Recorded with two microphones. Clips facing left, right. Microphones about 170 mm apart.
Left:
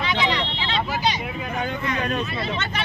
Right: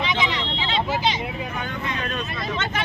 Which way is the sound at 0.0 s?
20° right (ahead or behind).